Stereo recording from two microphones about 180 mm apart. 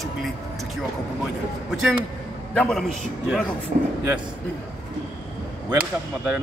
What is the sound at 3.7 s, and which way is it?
Speech, 40° right (ahead or behind).